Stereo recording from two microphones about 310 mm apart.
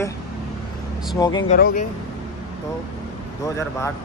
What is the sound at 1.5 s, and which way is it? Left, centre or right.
Speech, left.